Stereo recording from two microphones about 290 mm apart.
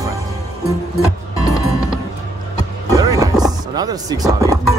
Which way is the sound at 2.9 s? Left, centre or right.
Centre.